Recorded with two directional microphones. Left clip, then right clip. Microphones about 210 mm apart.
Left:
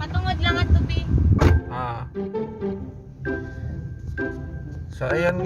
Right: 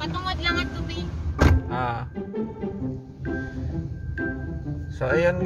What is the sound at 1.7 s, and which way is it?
Music, 15° right (ahead or behind).